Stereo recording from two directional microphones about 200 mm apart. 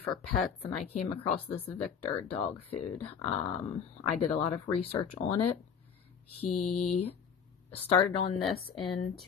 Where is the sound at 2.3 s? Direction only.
30° left (ahead or behind).